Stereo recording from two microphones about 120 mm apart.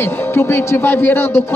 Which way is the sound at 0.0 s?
20° left (ahead or behind).